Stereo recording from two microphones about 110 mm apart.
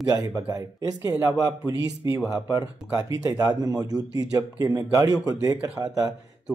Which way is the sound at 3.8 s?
35° right (ahead or behind).